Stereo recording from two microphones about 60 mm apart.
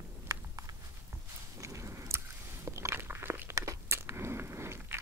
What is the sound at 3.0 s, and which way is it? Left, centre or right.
Biting, right.